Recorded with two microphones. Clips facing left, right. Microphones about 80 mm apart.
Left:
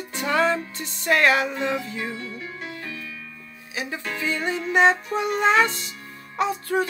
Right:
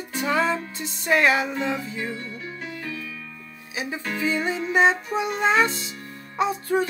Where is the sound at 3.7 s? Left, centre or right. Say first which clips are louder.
Right 1 dB; centre.